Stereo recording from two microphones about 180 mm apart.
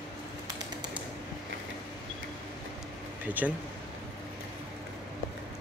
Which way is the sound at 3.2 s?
10° right (ahead or behind).